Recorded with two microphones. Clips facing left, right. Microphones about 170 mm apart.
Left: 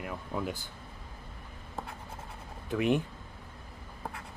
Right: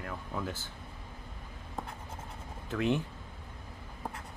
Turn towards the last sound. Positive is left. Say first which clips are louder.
# left 2 dB
turn(degrees=15)  # may be behind; listen again after turning